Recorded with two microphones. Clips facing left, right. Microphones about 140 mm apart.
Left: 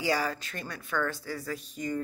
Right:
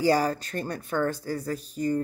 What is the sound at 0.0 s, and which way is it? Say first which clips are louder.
Speech: right 7 dB; 40° right (ahead or behind).